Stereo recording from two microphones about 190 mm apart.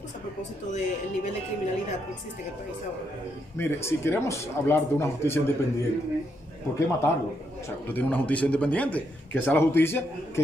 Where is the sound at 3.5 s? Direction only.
10° left (ahead or behind).